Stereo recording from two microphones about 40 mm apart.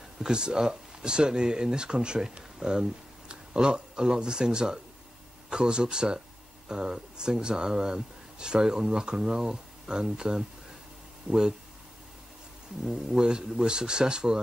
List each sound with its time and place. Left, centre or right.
0.2 s a man's voice: centre
13.1 s a man's voice: centre